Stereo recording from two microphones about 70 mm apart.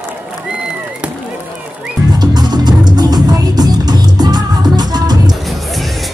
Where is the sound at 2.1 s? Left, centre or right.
Right.